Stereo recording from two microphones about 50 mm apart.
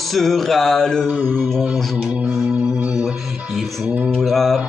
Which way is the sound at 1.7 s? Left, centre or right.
Centre.